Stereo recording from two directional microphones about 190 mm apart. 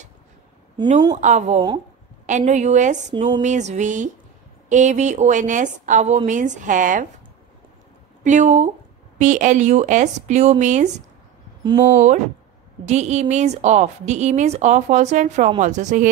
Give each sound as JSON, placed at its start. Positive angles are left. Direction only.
{"t": 1.1, "sound": "a woman's voice", "side_deg": -35}
{"t": 8.2, "sound": "a woman's voice", "side_deg": -40}